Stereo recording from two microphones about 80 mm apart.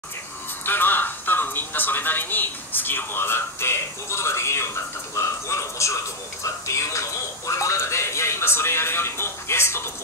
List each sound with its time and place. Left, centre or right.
0.7 s a man's voice: left